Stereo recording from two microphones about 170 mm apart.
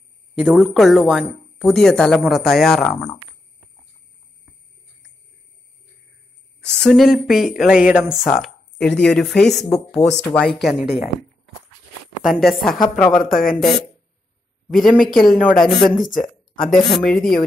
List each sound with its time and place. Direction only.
0.4 s speech: centre (ahead or behind)
6.6 s speech: 5° left (ahead or behind)
12.3 s speech: centre (ahead or behind)
13.3 s speech: 55° left (ahead or behind)
13.6 s speech: centre (ahead or behind)